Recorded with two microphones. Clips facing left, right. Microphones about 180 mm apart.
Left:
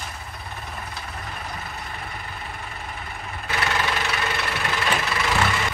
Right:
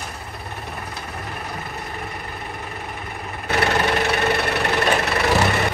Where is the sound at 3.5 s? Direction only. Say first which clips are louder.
Right 6 dB; 55° right (ahead or behind).